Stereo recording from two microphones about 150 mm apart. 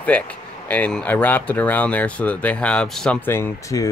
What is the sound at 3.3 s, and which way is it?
Speech, 20° left (ahead or behind).